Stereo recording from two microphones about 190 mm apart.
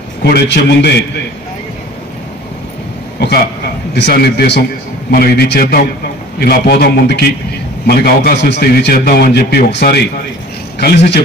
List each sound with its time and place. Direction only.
0.2 s a man's voice: 60° left (ahead or behind)
3.2 s a man's voice: 60° left (ahead or behind)